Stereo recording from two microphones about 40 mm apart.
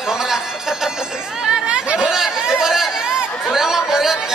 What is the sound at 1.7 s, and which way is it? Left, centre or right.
Chatter, right.